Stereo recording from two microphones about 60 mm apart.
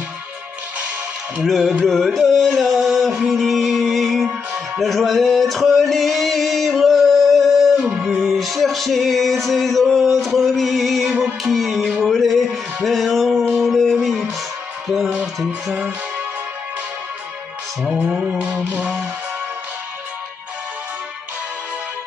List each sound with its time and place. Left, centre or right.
1.4 s music: centre
11.1 s music: centre
11.5 s music: centre
11.8 s music: centre
12.1 s music: centre
13.6 s a sound: centre
13.9 s music: centre
18.4 s music: right